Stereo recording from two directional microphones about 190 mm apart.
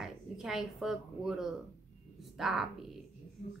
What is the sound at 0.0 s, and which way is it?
Speech, centre (ahead or behind).